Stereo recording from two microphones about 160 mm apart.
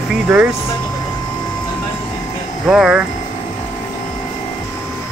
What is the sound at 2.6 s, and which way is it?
Speech, 5° right (ahead or behind).